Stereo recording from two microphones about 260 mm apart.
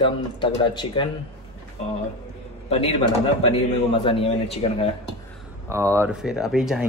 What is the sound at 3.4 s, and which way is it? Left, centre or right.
A man's voice, centre.